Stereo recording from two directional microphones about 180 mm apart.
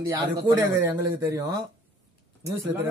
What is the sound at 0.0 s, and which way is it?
Speech, 15° right (ahead or behind).